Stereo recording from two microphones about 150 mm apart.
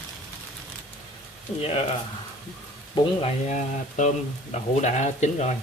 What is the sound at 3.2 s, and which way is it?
Speech, 55° left (ahead or behind).